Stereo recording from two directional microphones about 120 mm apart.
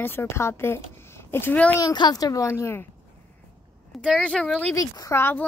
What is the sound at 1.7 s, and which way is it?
A woman's voice, 35° left (ahead or behind).